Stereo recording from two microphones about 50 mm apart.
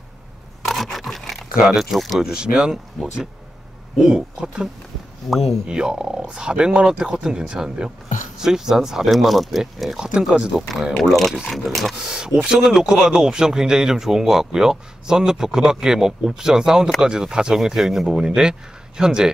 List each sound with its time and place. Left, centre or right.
0.9 s dog: centre
1.6 s speech: centre
2.2 s speech: centre
4.0 s speech: centre
5.2 s speech: centre
5.7 s speech: centre
9.9 s speech: centre
10.7 s speech: centre
11.9 s speech: centre